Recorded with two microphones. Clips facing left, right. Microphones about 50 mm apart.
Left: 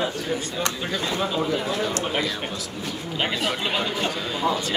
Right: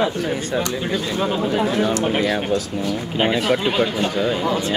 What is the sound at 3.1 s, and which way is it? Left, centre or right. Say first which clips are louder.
Speech: right 7 dB; right.